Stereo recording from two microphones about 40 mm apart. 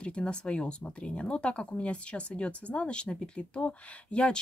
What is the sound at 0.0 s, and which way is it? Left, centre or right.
Speech, left.